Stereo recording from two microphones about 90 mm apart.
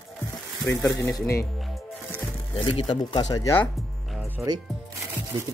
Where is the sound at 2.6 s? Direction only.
70° left (ahead or behind).